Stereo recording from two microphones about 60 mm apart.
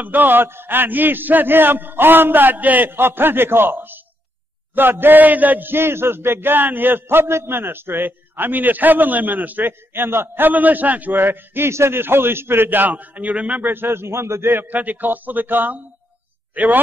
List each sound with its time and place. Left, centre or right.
0.0 s a man's voice: right
13.7 s a man's voice: right